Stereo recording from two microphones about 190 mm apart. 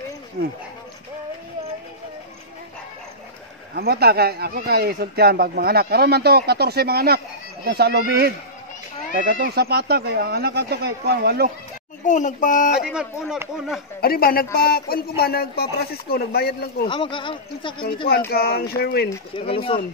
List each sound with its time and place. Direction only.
3.7 s speech: 55° right (ahead or behind)
12.0 s speech: 40° left (ahead or behind)
12.8 s speech: 5° right (ahead or behind)
14.0 s speech: 50° left (ahead or behind)
16.8 s speech: 25° left (ahead or behind)
18.3 s a sound: 55° left (ahead or behind)
19.4 s speech: 30° left (ahead or behind)